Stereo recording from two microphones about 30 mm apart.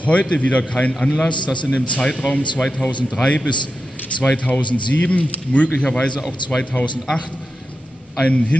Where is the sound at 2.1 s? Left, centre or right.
Left.